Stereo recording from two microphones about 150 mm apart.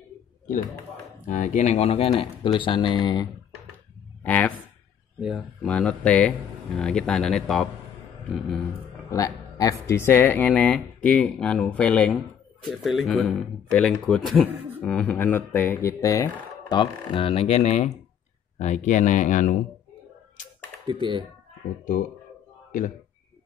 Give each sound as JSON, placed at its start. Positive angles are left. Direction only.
{"t": 1.2, "sound": "speech", "side_deg": 55}
{"t": 4.2, "sound": "speech", "side_deg": 10}
{"t": 5.2, "sound": "speech", "side_deg": 0}
{"t": 9.1, "sound": "speech", "side_deg": 20}
{"t": 16.6, "sound": "speech", "side_deg": 30}
{"t": 20.4, "sound": "a sound", "side_deg": 55}
{"t": 20.8, "sound": "speech", "side_deg": -35}
{"t": 22.7, "sound": "speech", "side_deg": 60}